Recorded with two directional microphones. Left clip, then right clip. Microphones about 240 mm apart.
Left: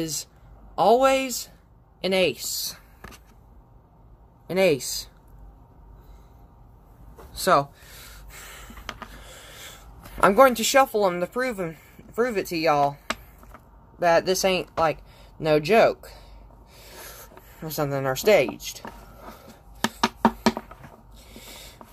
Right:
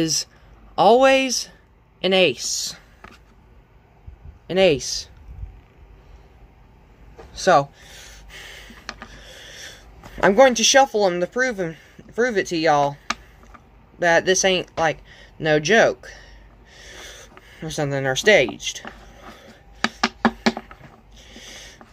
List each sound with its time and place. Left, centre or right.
0.0 s speech: right
4.5 s speech: centre
7.3 s a sound: centre
9.0 s speech: centre
17.0 s writing: centre
21.3 s a sound: centre